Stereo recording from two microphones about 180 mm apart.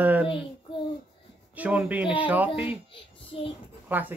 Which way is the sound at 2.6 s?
30° left (ahead or behind).